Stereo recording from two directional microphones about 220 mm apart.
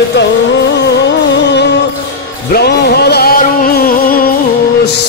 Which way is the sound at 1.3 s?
50° left (ahead or behind).